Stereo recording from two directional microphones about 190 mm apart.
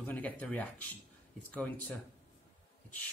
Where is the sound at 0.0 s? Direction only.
10° left (ahead or behind).